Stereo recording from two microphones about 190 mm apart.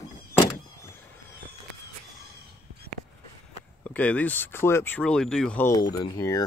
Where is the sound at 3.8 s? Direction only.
5° left (ahead or behind).